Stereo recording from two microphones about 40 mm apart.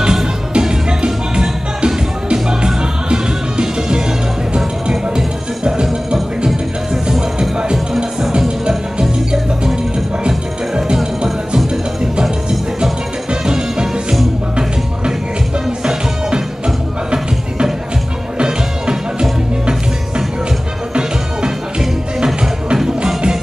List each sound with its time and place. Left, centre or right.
0.0 s music: centre
11.5 s music: centre
16.3 s music: right
22.2 s music: right